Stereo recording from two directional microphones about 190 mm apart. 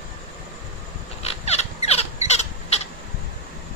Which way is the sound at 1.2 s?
35° left (ahead or behind).